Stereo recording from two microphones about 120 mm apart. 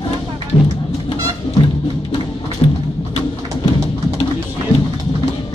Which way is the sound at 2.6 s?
50° left (ahead or behind).